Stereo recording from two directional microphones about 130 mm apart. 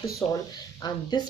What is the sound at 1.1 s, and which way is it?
Speech, 30° left (ahead or behind).